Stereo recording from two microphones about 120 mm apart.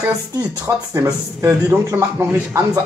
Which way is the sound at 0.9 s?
25° right (ahead or behind).